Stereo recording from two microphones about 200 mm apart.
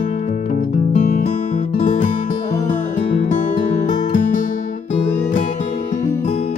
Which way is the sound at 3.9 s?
40° left (ahead or behind).